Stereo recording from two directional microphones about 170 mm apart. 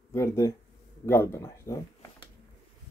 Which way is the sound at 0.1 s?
15° left (ahead or behind).